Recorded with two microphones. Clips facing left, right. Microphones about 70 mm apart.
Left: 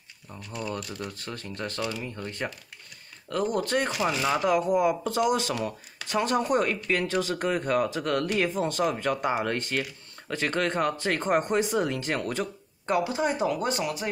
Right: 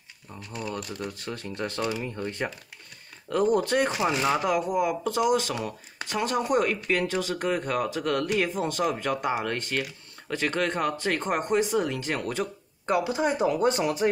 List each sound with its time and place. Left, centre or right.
0.3 s speech: centre; by 13.8 s right